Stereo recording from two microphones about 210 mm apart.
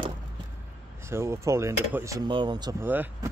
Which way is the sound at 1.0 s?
10° right (ahead or behind).